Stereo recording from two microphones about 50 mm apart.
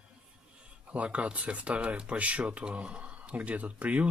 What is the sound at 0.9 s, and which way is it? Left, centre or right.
Speech, right.